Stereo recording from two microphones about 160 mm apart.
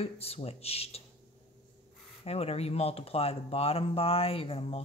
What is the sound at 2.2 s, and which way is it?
Speech, 40° left (ahead or behind).